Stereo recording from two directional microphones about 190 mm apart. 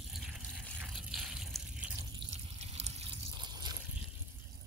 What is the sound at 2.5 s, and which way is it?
Water, 35° right (ahead or behind).